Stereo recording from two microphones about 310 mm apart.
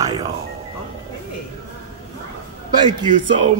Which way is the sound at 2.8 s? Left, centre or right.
Centre.